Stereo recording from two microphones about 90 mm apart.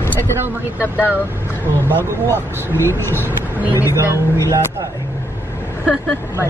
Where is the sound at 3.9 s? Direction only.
35° right (ahead or behind).